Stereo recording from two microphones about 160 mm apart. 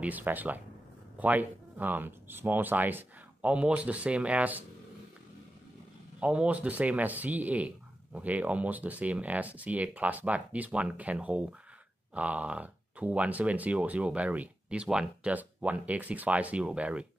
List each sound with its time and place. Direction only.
0.0 s speech: 10° right (ahead or behind)
6.1 s speech: 5° right (ahead or behind)